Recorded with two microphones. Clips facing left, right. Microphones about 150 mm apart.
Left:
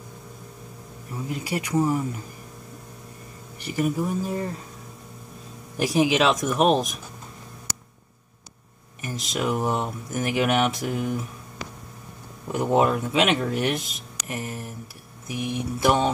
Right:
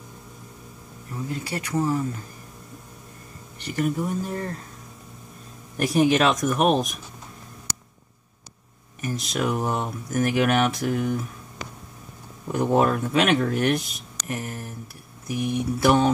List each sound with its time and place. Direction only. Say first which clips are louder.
1.1 s speech: left 1 dB; 15° left (ahead or behind)
3.5 s speech: even; 10° left (ahead or behind)
5.8 s speech: right 1 dB; centre (ahead or behind)
9.0 s speech: right 1 dB; centre (ahead or behind)
12.4 s speech: even; 5° left (ahead or behind)